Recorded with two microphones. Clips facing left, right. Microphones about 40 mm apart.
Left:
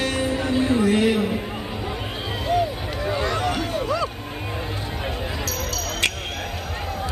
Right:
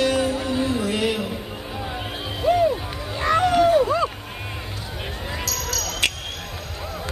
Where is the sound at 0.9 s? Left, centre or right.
Left.